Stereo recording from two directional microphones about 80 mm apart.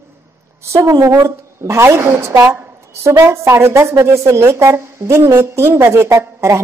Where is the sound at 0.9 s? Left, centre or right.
Right.